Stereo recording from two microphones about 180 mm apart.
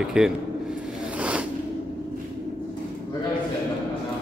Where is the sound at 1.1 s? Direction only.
5° right (ahead or behind).